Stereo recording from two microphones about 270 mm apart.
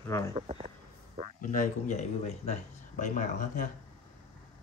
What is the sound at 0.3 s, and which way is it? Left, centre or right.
Speech, right.